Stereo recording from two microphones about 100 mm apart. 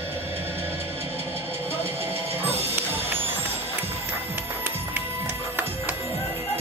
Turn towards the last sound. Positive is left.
turn(degrees=-20)  # may be behind; listen again after turning